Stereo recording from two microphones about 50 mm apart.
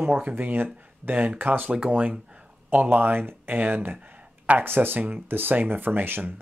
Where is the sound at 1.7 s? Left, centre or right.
Right.